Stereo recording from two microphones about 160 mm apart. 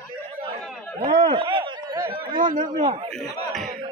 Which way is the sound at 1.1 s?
35° right (ahead or behind).